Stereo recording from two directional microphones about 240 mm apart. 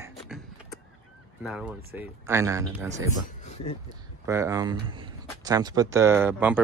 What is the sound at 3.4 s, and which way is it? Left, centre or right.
Speech, left.